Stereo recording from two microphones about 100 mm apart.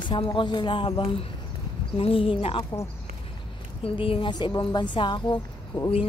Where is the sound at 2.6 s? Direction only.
35° left (ahead or behind).